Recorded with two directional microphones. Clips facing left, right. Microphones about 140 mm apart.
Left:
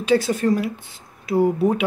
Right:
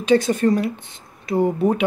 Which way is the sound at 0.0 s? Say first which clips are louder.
Right 2 dB; 5° left (ahead or behind).